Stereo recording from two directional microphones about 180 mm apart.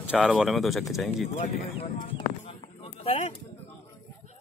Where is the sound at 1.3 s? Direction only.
35° left (ahead or behind).